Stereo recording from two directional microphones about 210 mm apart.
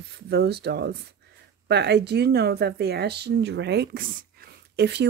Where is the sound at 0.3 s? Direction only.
50° right (ahead or behind).